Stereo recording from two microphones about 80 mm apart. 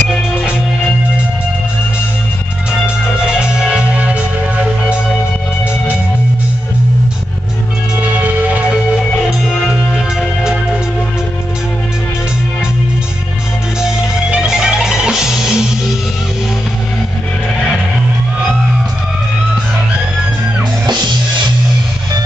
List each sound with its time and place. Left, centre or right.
3.3 s music: centre
8.0 s music: centre
9.9 s music: centre
13.7 s music: centre